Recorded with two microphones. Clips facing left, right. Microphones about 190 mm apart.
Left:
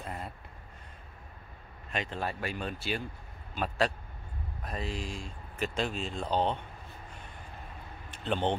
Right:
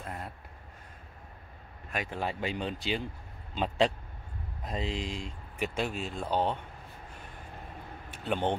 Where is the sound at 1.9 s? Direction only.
10° right (ahead or behind).